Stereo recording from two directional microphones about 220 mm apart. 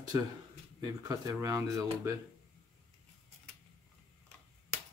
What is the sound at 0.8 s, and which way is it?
Speech, 15° right (ahead or behind).